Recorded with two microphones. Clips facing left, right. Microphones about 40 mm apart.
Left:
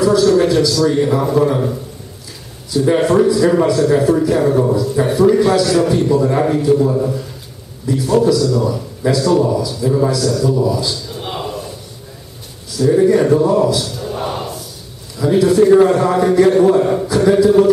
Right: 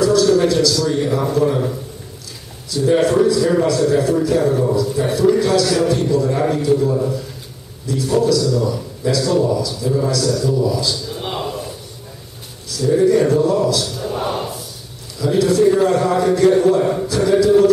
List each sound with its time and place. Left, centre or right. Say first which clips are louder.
0.0 s a man's voice: left 2 dB; centre
10.2 s a man's voice: left 2 dB; centre
10.5 s a man's voice: left 2 dB; centre
11.1 s a sound: even; centre
12.8 s a man's voice: left 2 dB; centre
13.8 s a sound: even; centre
15.1 s a man's voice: left 3 dB; centre